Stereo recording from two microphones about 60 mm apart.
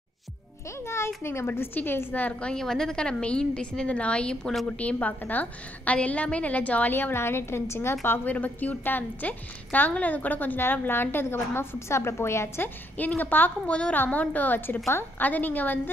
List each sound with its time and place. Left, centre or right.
0.8 s a woman's voice: left
2.5 s a woman's voice: centre; by 6.9 s left
6.9 s a woman's voice: left
8.3 s a woman's voice: left
12.9 s a woman's voice: left